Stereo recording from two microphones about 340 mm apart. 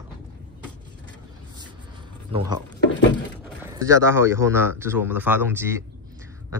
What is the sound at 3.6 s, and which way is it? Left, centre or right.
Speech, centre.